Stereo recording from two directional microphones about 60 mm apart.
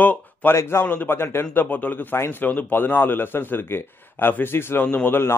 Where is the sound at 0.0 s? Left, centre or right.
Left.